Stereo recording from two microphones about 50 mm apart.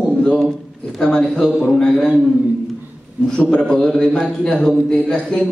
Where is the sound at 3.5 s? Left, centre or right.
Centre.